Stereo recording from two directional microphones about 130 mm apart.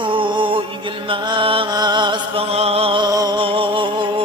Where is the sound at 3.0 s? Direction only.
30° right (ahead or behind).